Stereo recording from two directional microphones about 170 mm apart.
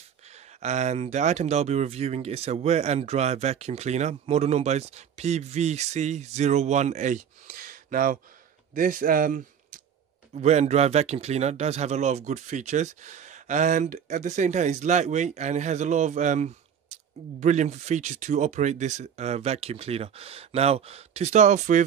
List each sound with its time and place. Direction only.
0.6 s speech: 40° right (ahead or behind)
10.3 s speech: 40° right (ahead or behind)